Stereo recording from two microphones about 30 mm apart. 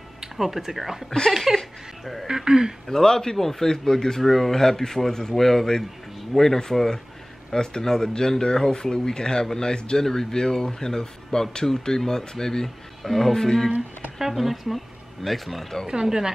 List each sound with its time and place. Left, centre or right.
0.2 s speech: centre
2.9 s speech: centre
3.7 s speech: left
4.2 s speech: centre
7.5 s speech: left
12.6 s speech: centre
13.3 s speech: centre
14.2 s speech: centre
15.9 s speech: right